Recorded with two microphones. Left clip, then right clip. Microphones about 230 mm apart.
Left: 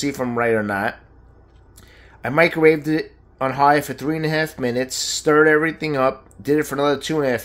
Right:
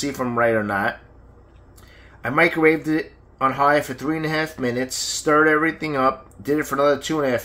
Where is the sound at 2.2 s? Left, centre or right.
Left.